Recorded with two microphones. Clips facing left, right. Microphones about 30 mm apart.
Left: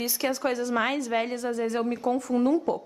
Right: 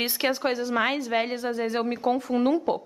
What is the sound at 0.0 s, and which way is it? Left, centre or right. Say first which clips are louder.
Speech: right 2 dB; right.